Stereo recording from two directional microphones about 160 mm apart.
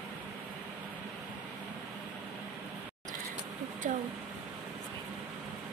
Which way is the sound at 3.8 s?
50° right (ahead or behind).